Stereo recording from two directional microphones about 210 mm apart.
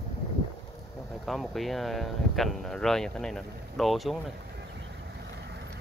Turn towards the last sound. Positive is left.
turn(degrees=0)  # may be behind; listen again after turning